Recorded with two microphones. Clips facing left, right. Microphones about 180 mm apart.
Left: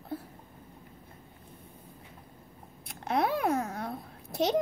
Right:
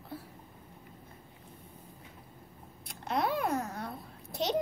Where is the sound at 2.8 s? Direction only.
60° left (ahead or behind).